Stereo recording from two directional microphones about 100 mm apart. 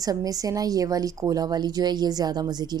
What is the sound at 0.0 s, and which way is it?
A woman's voice, 40° right (ahead or behind).